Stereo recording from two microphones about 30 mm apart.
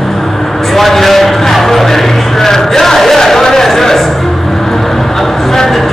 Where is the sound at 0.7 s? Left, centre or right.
Centre.